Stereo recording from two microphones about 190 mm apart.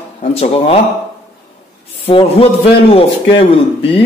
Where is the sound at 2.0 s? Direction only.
30° left (ahead or behind).